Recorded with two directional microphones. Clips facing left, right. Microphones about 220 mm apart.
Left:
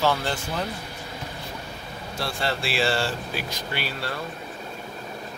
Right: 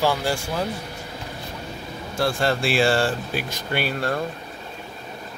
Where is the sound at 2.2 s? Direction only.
45° right (ahead or behind).